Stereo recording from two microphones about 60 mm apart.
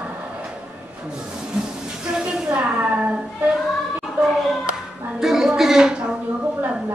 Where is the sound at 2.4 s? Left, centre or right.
Right.